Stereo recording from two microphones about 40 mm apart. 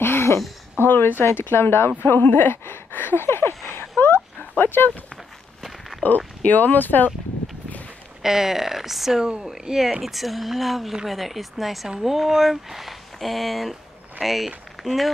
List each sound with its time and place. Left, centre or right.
0.0 s a sound: left
1.4 s speech: left
2.0 s speech: left
2.3 s speech: left
3.2 s a sound: left
4.0 s a sound: left
5.1 s walk: centre
6.0 s speech: left
8.2 s speech: centre
10.0 s speech: centre